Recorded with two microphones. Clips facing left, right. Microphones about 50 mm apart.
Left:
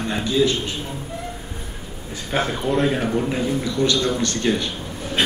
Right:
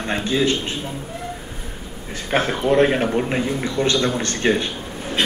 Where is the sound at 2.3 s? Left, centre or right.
Right.